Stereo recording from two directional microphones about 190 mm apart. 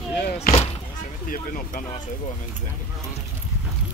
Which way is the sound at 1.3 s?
45° left (ahead or behind).